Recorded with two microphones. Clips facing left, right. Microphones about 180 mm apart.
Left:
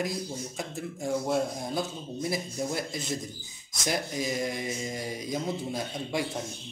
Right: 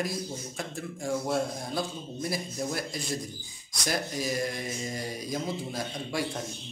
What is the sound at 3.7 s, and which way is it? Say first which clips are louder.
Speech: left 1 dB; 20° left (ahead or behind).